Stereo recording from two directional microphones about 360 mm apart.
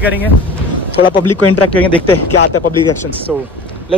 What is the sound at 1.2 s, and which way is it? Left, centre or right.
Speech, left.